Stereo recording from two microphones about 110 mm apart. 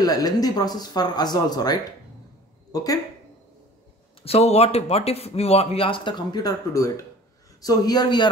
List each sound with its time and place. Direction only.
0.0 s speech: 35° left (ahead or behind)
4.2 s a man's voice: 65° left (ahead or behind); by 8.3 s 40° left (ahead or behind)